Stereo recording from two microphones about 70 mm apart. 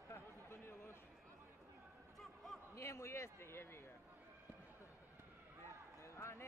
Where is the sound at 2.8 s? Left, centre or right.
Left.